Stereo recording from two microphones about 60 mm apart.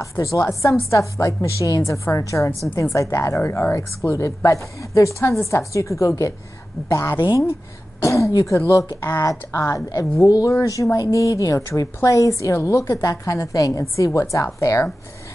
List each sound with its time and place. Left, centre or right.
0.2 s a woman's voice: left
3.3 s a woman's voice: left
4.1 s a woman's voice: left
6.9 s a woman's voice: left
8.0 s a woman's voice: left
8.5 s a woman's voice: left
11.0 s a woman's voice: left